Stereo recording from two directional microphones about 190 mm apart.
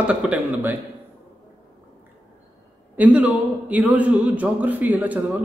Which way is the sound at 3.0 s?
5° right (ahead or behind).